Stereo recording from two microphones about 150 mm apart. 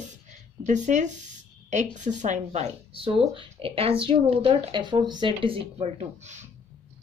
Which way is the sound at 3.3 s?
40° right (ahead or behind).